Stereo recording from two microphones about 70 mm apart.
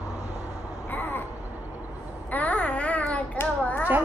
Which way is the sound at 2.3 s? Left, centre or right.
Left.